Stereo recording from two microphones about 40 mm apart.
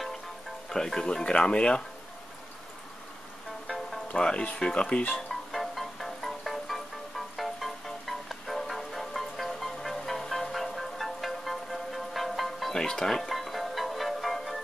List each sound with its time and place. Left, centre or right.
0.7 s speech: centre
3.6 s music: centre
4.1 s speech: left
5.5 s music: centre
12.7 s music: centre